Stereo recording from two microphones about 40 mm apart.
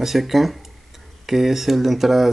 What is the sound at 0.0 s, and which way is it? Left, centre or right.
Speech, centre.